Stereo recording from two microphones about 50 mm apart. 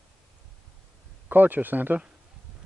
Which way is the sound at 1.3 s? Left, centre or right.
Right.